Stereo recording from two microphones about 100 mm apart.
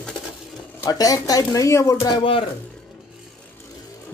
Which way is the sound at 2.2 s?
60° left (ahead or behind).